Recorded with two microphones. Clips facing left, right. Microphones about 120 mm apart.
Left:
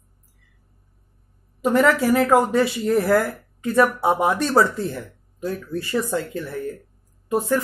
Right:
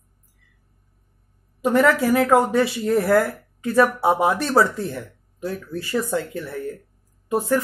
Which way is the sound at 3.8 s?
20° right (ahead or behind).